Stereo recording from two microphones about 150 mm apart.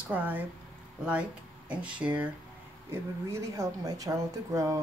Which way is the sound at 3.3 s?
20° right (ahead or behind).